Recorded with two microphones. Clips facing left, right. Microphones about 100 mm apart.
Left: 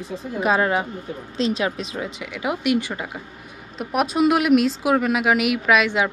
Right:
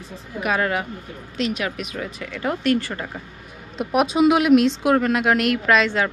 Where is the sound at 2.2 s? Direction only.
10° left (ahead or behind).